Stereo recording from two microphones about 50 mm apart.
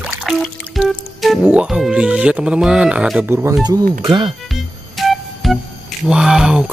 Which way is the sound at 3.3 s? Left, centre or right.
Right.